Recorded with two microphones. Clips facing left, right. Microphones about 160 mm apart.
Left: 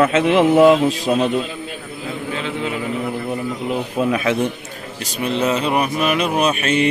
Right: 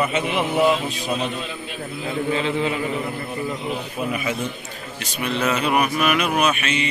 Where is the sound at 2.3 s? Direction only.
Centre (ahead or behind).